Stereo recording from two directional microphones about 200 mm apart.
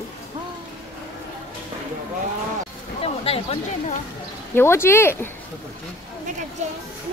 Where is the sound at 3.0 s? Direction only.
30° left (ahead or behind).